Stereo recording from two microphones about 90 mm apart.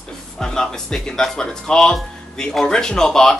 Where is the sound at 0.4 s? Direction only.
5° left (ahead or behind).